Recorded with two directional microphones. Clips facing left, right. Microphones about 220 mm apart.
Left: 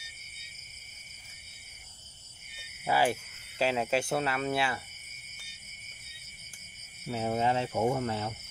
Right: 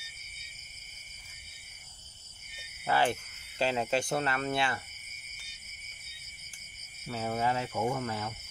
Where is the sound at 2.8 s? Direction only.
10° left (ahead or behind).